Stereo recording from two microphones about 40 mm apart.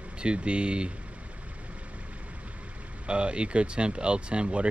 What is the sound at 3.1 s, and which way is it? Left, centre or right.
Speech, right.